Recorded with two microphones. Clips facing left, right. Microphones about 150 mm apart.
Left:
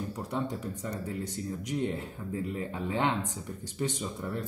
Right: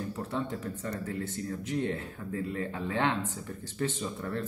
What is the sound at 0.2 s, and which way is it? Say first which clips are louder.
Speech: left 1 dB; 15° left (ahead or behind).